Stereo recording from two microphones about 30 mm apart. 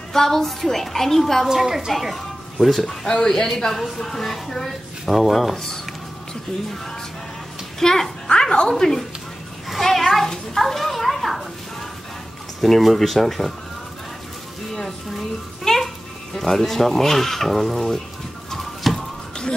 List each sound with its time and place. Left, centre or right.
0.1 s speech: centre
1.4 s a woman's voice: centre
3.1 s speech: left
4.0 s speech: centre
4.6 s speech: centre
7.8 s speech: centre
8.3 s music: left
8.7 s a child's voice: centre
12.5 s speech: centre
15.1 s a child's voice: centre
18.5 s bird: centre